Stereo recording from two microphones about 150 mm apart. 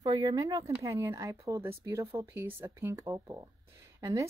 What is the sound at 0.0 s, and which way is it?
Speech, 30° right (ahead or behind).